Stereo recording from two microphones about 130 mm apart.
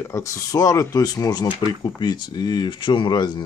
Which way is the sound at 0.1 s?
25° left (ahead or behind).